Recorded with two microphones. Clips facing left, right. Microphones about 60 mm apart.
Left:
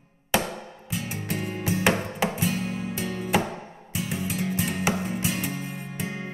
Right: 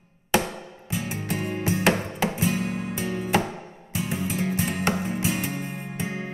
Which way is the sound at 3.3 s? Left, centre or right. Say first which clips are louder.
Even; centre.